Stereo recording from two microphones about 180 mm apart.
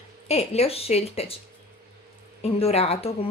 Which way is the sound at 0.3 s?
35° left (ahead or behind).